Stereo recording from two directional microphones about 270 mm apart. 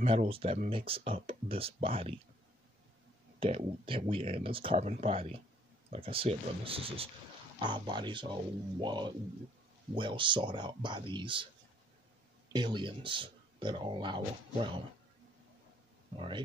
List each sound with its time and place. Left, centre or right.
0.0 s speech: right
3.3 s speech: right
12.5 s speech: centre